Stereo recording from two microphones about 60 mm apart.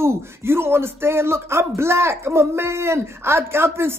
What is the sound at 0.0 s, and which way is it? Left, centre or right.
Speech, right.